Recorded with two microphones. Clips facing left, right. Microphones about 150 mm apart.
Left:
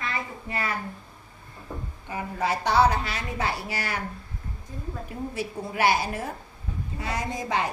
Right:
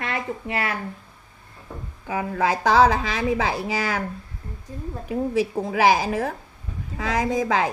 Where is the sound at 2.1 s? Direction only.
90° right.